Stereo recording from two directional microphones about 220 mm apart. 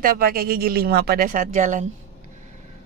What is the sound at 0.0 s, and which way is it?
Speech, 40° right (ahead or behind).